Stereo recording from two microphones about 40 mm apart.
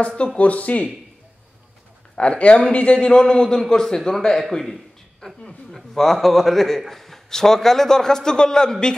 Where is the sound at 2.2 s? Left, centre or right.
Left; by 4.0 s centre.